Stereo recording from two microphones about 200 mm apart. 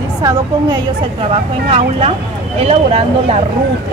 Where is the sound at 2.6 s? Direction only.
30° right (ahead or behind).